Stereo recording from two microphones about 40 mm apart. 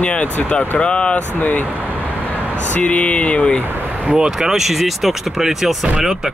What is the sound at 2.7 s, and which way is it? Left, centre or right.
Speech, left.